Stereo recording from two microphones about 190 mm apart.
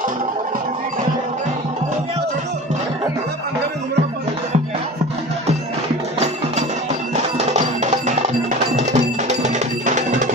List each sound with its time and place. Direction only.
6.1 s music: 35° right (ahead or behind)
8.7 s music: 40° right (ahead or behind)